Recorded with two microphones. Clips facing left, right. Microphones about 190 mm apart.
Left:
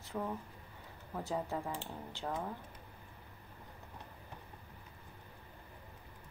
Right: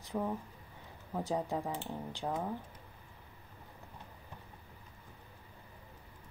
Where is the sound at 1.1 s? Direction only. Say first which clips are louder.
Right 3 dB; 15° right (ahead or behind).